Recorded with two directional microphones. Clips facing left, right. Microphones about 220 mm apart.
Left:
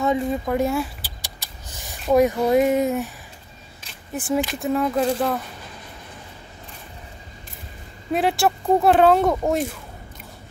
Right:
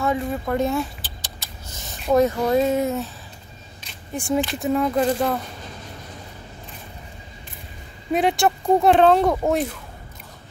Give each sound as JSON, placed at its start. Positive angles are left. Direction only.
{"t": 0.0, "sound": "a sound", "side_deg": 15}
{"t": 2.1, "sound": "female singing", "side_deg": 15}
{"t": 4.1, "sound": "speech", "side_deg": 5}
{"t": 8.1, "sound": "speech", "side_deg": 0}